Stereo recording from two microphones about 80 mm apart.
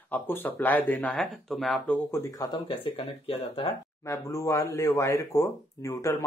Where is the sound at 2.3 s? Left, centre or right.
Left.